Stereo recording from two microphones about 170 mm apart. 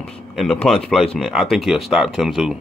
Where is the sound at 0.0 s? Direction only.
5° left (ahead or behind).